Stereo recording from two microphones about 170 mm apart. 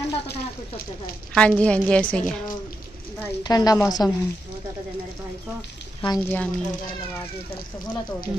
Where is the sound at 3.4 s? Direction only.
20° left (ahead or behind).